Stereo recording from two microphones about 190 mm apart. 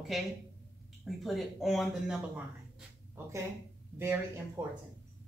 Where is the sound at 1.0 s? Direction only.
Centre (ahead or behind).